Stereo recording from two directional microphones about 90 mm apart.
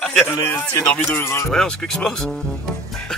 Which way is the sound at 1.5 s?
5° left (ahead or behind).